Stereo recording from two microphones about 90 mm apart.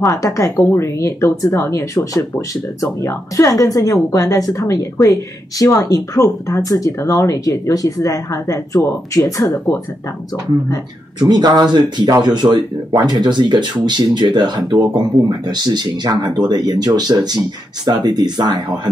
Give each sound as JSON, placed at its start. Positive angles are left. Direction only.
{"t": 0.0, "sound": "speech", "side_deg": 35}
{"t": 11.1, "sound": "speech", "side_deg": -50}